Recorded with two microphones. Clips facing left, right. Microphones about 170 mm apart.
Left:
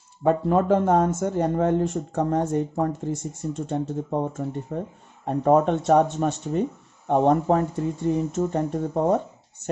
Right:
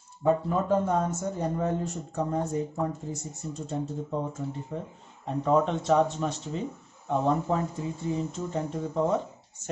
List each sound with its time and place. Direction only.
0.2 s speech: 65° left (ahead or behind)
3.6 s speech: 80° left; by 9.7 s 55° left (ahead or behind)